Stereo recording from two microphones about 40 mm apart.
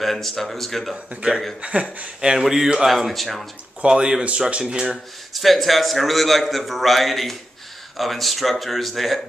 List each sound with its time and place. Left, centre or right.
0.0 s a man's voice: centre
1.6 s speech: right
2.3 s speech: centre
2.9 s a man's voice: centre
3.8 s speech: centre
5.3 s a man's voice: centre